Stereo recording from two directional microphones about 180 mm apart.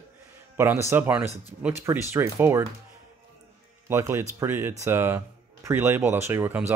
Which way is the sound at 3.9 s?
15° right (ahead or behind).